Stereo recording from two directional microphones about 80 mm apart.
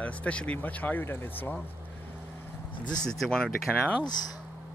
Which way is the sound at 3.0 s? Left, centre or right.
Centre.